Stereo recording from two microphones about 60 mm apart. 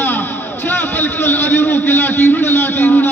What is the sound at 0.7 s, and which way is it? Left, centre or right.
A man's voice, left.